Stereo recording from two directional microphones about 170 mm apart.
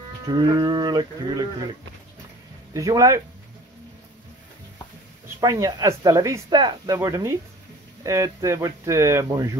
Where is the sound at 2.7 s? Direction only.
20° right (ahead or behind).